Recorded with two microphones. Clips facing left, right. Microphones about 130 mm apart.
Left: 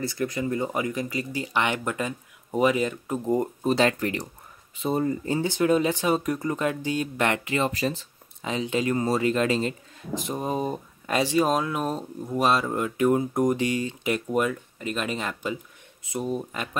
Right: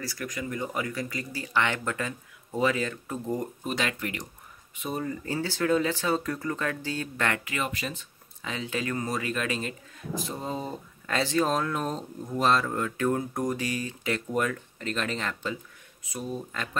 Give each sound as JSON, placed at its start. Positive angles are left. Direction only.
{"t": 0.0, "sound": "speech", "side_deg": 25}
{"t": 3.6, "sound": "speech", "side_deg": 35}
{"t": 8.5, "sound": "speech", "side_deg": 20}
{"t": 16.0, "sound": "speech", "side_deg": 20}